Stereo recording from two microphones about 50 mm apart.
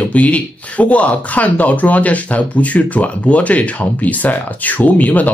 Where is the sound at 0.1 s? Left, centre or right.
Left.